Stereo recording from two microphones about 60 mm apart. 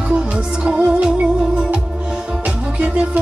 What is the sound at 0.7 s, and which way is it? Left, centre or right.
Music, right.